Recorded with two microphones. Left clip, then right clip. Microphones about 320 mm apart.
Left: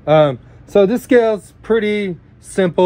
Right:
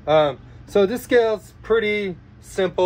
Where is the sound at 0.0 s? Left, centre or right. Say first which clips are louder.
Left 5 dB; left.